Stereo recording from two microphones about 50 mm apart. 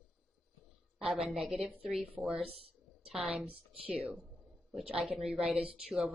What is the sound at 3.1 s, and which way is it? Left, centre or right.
A woman's voice, right.